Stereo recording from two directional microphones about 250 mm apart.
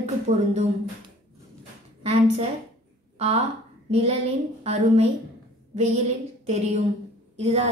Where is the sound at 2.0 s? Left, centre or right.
Right.